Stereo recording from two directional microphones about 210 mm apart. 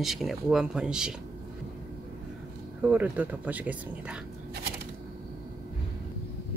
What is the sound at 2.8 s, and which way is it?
Speech, 5° right (ahead or behind).